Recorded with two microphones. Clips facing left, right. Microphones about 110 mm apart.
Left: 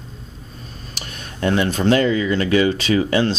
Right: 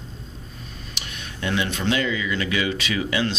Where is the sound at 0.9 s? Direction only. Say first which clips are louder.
Left 3 dB; 40° left (ahead or behind).